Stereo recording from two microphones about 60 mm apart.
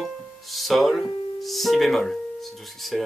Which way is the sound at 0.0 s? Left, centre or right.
Centre.